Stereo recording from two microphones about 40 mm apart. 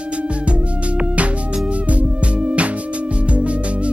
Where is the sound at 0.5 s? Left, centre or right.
Right.